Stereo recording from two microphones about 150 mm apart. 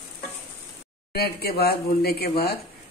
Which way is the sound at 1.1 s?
90° left.